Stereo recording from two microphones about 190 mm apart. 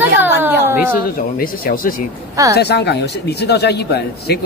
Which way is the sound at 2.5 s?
60° left (ahead or behind).